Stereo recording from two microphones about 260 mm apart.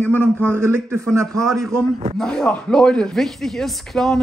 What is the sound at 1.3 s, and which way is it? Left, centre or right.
Speech, centre.